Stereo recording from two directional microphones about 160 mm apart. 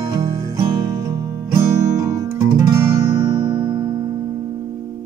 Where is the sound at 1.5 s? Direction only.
20° right (ahead or behind).